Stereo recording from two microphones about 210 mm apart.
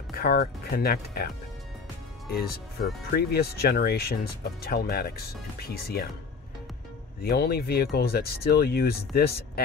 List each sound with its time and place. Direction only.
0.1 s speech: 45° left (ahead or behind)
3.1 s speech: 45° left (ahead or behind)
7.2 s speech: 45° left (ahead or behind)